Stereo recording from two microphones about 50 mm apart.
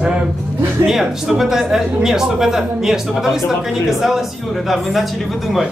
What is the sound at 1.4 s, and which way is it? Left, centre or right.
Speech, centre.